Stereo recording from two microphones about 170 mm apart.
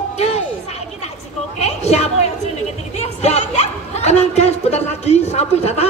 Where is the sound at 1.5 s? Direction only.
40° left (ahead or behind).